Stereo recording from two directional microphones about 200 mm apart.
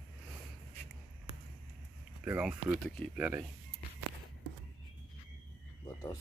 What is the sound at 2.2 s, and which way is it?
Speech, 5° right (ahead or behind).